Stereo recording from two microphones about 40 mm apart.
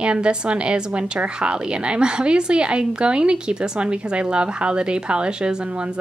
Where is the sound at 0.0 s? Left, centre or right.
Right.